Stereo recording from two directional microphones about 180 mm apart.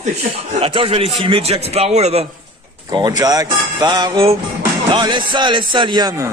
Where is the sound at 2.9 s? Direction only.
20° right (ahead or behind).